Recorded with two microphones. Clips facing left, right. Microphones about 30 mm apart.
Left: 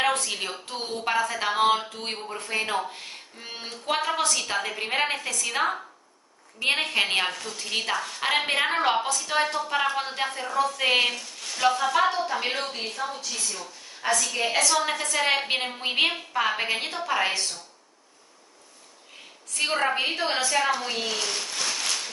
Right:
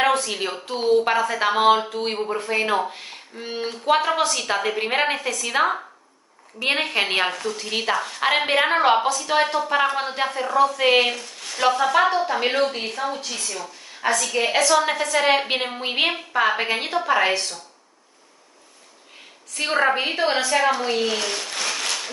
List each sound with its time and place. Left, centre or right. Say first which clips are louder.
0.0 s speech: right 5 dB; centre
13.0 s speech: right 5 dB; right
14.0 s speech: right 4 dB; centre
19.5 s speech: right 4 dB; centre
21.6 s a sound: right 3 dB; right